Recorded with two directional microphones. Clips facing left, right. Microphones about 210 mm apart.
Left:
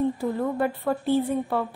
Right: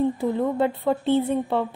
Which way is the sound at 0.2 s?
20° right (ahead or behind).